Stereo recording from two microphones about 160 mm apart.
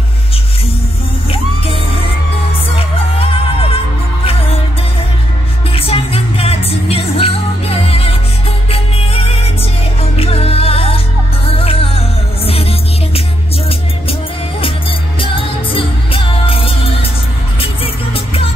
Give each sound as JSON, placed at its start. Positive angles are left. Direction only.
{"t": 3.7, "sound": "music", "side_deg": 35}
{"t": 5.7, "sound": "music", "side_deg": 35}
{"t": 14.6, "sound": "music", "side_deg": 35}